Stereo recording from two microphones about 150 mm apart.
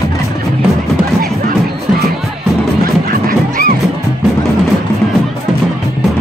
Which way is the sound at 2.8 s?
75° right (ahead or behind).